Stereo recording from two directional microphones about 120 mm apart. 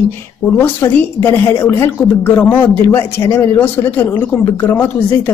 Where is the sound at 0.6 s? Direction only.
15° left (ahead or behind).